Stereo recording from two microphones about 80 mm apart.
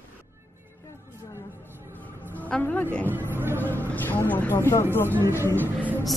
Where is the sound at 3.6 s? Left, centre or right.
Left.